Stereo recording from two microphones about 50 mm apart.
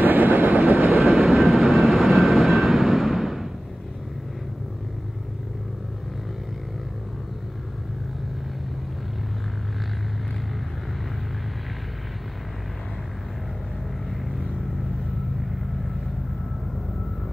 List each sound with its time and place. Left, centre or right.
0.0 s vehicle: right
0.9 s vehicle: centre